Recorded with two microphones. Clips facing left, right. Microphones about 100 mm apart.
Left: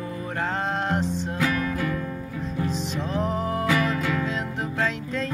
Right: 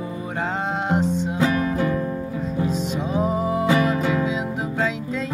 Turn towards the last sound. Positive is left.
turn(degrees=-10)  # may be behind; listen again after turning